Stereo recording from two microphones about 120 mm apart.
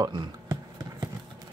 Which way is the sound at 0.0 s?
35° right (ahead or behind).